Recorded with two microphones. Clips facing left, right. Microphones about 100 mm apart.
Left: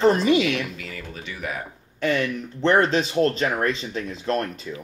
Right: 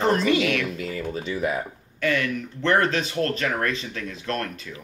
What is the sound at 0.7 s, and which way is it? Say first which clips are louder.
Speech: right 7 dB; 30° right (ahead or behind).